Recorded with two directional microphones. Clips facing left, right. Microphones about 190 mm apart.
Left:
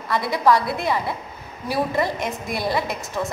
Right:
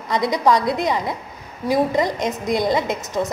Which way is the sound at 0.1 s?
20° right (ahead or behind).